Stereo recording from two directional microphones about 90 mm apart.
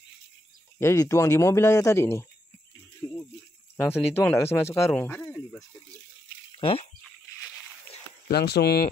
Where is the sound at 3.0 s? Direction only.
35° left (ahead or behind).